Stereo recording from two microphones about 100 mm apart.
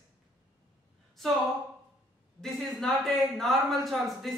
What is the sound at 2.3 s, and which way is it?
A man's voice, centre (ahead or behind).